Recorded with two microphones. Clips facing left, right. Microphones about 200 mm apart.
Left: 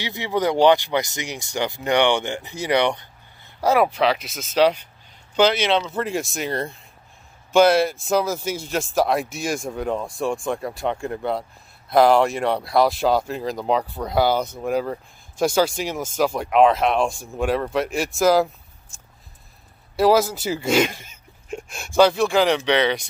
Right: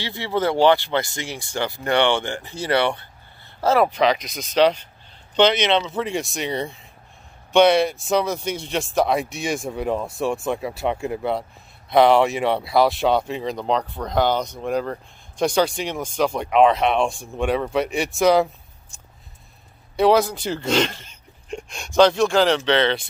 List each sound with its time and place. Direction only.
0.0 s speech: 15° left (ahead or behind); by 18.9 s centre (ahead or behind)
20.0 s speech: 5° left (ahead or behind)